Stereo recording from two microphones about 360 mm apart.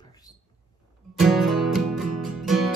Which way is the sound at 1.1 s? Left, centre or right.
Centre.